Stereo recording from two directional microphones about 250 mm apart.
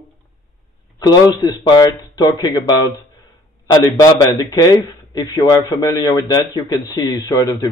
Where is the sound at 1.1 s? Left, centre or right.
Centre.